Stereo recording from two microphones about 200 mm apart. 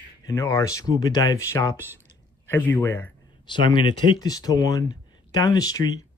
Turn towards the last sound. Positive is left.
turn(degrees=20)  # may be behind; listen again after turning